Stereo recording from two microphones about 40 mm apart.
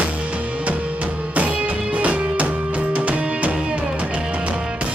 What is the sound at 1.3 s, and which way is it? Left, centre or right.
Music, right.